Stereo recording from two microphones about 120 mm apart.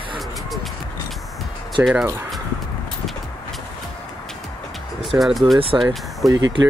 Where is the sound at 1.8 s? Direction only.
15° right (ahead or behind).